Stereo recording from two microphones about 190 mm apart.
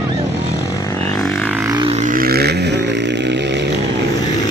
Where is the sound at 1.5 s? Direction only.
10° right (ahead or behind).